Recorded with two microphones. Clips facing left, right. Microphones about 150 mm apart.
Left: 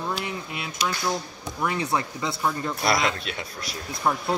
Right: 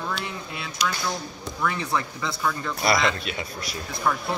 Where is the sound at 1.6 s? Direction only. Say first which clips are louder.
Left 1 dB; 20° left (ahead or behind).